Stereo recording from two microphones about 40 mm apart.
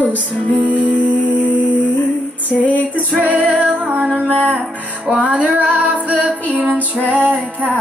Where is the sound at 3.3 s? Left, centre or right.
Right.